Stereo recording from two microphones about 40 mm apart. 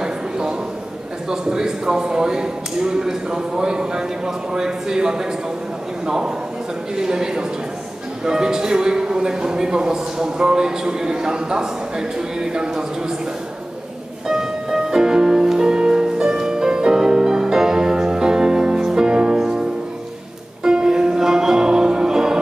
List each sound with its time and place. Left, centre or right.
0.0 s a sound: right
1.3 s a man's voice: centre
14.2 s music: centre
20.6 s music: centre